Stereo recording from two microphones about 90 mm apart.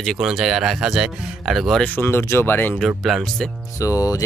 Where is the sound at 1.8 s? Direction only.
20° left (ahead or behind).